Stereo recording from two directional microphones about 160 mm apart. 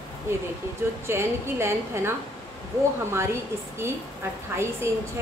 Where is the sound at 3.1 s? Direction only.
15° right (ahead or behind).